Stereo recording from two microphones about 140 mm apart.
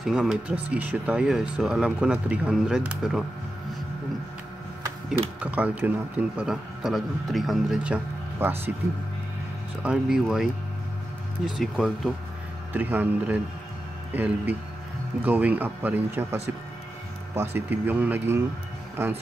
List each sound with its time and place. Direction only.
0.0 s speech: centre (ahead or behind)
5.4 s a man's voice: 10° right (ahead or behind)
9.8 s speech: 5° right (ahead or behind)
12.7 s a man's voice: 15° right (ahead or behind)
17.4 s a man's voice: 15° right (ahead or behind)